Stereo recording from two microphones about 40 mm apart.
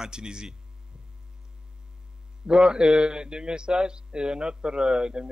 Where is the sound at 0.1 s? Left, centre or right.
Centre.